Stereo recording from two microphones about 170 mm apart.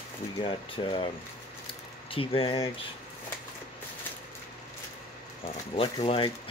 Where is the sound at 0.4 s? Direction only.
30° left (ahead or behind).